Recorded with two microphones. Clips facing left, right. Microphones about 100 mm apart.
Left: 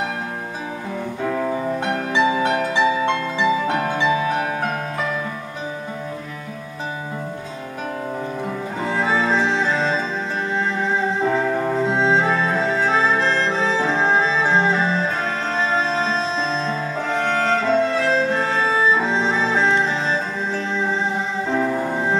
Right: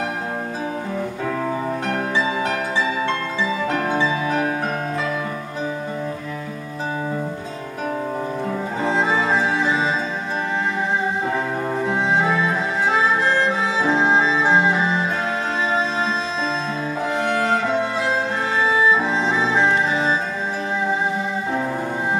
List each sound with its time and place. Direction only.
8.8 s music: 20° right (ahead or behind)
11.9 s music: 20° left (ahead or behind)
12.3 s music: 15° right (ahead or behind)
17.1 s music: 15° right (ahead or behind)